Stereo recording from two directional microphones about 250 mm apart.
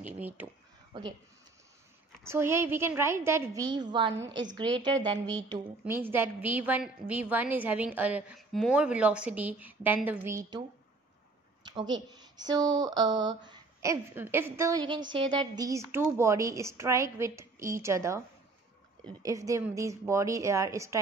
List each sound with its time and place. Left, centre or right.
2.2 s a woman's voice: centre
11.6 s a woman's voice: centre
19.2 s a woman's voice: centre